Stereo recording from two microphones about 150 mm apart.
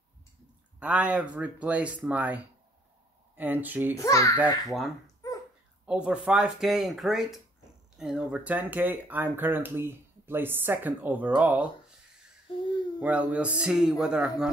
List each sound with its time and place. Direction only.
0.7 s speech: 10° right (ahead or behind)
3.9 s a child's voice: 20° left (ahead or behind)
5.0 s dog: 20° left (ahead or behind)
5.9 s speech: 5° right (ahead or behind)
12.5 s babbling: 30° left (ahead or behind)
13.0 s speech: 10° right (ahead or behind)